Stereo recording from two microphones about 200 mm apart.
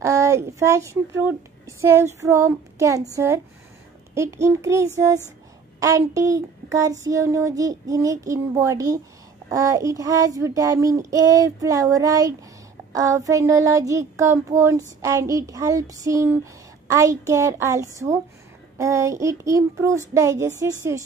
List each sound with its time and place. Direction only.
0.0 s child singing: 15° right (ahead or behind)
4.1 s child singing: 15° right (ahead or behind)
5.8 s speech: 15° right (ahead or behind)
7.0 s child singing: 15° right (ahead or behind)